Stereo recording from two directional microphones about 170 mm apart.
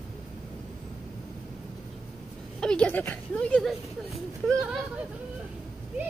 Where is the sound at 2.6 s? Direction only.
5° left (ahead or behind).